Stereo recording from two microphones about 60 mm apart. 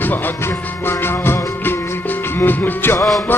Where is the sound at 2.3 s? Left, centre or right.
Left.